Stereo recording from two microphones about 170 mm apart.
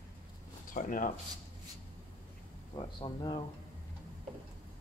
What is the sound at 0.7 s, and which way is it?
Speech, 50° left (ahead or behind).